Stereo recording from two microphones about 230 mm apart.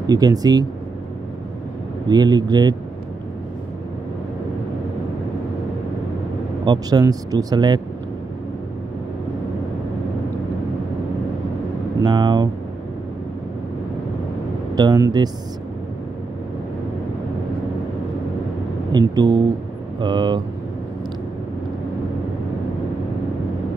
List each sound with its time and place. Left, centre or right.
0.0 s speech: centre
2.0 s speech: centre
6.6 s speech: centre
12.0 s speech: centre
14.8 s speech: centre
18.9 s speech: centre